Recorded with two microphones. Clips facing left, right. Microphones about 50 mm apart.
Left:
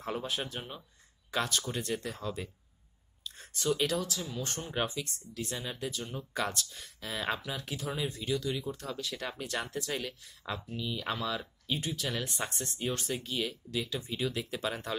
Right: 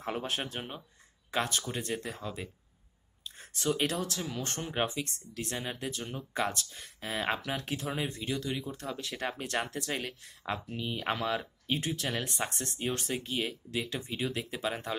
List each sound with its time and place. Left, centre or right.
0.0 s speech: right
7.4 s speech: right